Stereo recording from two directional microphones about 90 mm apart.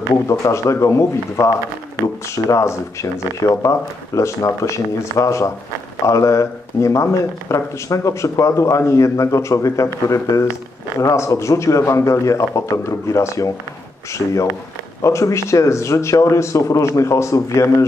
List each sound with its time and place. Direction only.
0.3 s speech: 35° left (ahead or behind)